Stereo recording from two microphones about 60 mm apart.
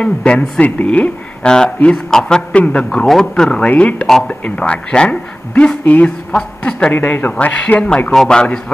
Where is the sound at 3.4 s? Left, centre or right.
Centre; by 7.3 s left.